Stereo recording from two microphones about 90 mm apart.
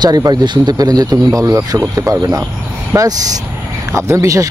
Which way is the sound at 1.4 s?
35° right (ahead or behind).